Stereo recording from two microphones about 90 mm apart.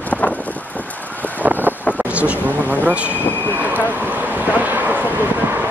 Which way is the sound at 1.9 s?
15° right (ahead or behind).